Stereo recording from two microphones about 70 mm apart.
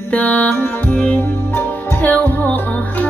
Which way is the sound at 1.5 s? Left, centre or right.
Left.